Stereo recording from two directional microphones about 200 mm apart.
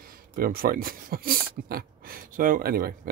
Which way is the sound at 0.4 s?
45° right (ahead or behind).